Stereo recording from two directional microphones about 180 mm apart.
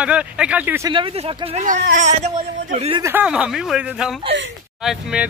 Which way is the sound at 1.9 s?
45° right (ahead or behind).